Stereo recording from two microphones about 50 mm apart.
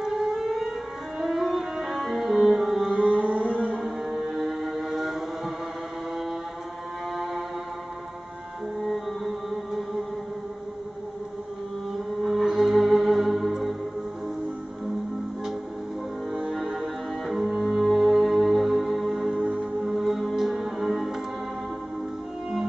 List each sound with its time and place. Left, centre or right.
0.0 s civil defense siren: centre
1.2 s music: centre
2.9 s music: right
3.8 s vehicle: centre
8.8 s music: centre
12.2 s music: centre
16.3 s music: centre
19.4 s music: right
19.9 s music: centre